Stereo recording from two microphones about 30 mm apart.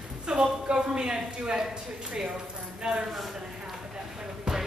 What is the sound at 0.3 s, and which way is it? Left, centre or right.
Speech, right.